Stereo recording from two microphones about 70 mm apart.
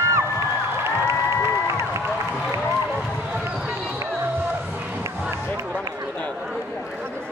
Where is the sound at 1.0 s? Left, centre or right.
Right.